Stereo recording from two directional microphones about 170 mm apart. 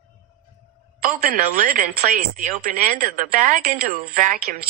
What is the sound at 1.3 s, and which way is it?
Speech, 50° right (ahead or behind).